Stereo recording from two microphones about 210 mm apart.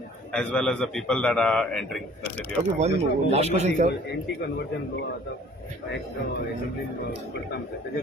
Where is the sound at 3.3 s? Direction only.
30° right (ahead or behind).